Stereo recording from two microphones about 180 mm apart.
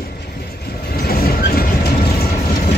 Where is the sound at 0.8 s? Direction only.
55° left (ahead or behind).